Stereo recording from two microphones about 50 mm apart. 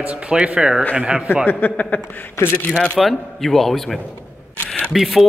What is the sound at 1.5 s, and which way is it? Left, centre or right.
Speech, left.